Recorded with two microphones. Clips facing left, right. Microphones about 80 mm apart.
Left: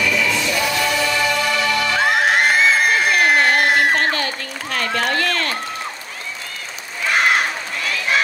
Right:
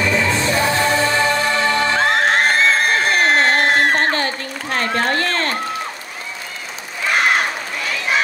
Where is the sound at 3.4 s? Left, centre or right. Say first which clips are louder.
Even; right.